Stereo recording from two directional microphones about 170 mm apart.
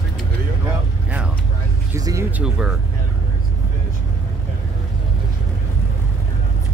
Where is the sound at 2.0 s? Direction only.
20° right (ahead or behind).